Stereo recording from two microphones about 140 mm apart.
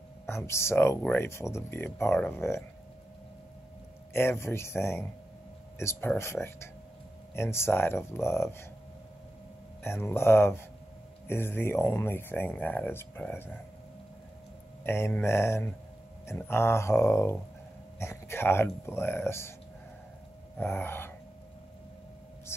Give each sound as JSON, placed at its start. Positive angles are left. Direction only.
{"t": 0.5, "sound": "speech", "side_deg": 20}
{"t": 4.1, "sound": "speech", "side_deg": 15}
{"t": 9.8, "sound": "speech", "side_deg": 15}
{"t": 14.8, "sound": "speech", "side_deg": 15}
{"t": 20.5, "sound": "a sound", "side_deg": 15}